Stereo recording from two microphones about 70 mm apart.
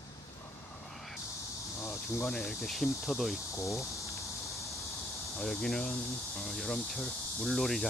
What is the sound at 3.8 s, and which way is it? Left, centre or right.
Insect, left.